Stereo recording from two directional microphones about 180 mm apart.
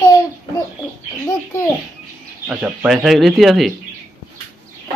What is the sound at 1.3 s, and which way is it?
Speech, 15° left (ahead or behind).